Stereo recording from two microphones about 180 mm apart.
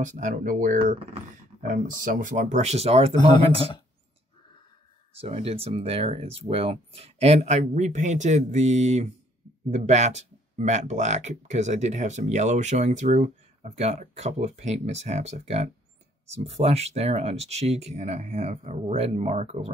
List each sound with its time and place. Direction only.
0.0 s speech: 45° right (ahead or behind)
0.8 s speech: 35° right (ahead or behind)
1.6 s speech: 50° right (ahead or behind); by 3.2 s 35° right (ahead or behind)
5.2 s speech: 35° right (ahead or behind)